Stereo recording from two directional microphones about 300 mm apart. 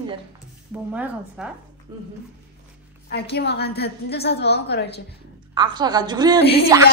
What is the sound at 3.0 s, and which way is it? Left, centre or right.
A woman's voice, left.